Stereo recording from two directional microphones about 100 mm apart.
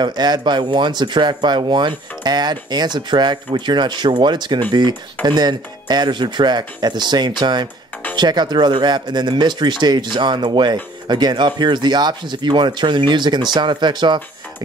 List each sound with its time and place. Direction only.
0.0 s speech: 45° right (ahead or behind)